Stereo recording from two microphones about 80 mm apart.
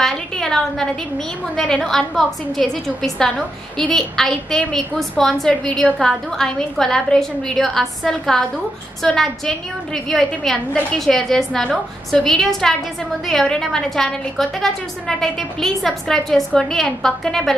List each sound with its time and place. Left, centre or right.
0.0 s a woman's voice: centre